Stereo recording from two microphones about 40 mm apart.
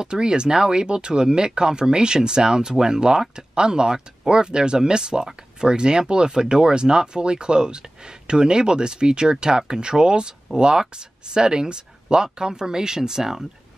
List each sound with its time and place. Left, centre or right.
0.0 s speech: centre